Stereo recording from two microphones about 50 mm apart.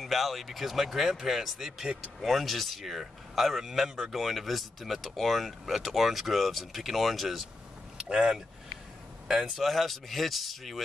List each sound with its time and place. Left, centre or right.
0.0 s speech: centre
8.1 s speech: centre
9.3 s speech: centre